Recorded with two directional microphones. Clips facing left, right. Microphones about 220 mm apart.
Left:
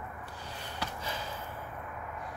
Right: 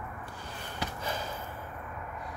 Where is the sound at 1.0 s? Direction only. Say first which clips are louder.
Right 3 dB; 50° right (ahead or behind).